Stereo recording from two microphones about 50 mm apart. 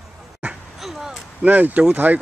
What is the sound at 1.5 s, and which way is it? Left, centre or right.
Speech, right.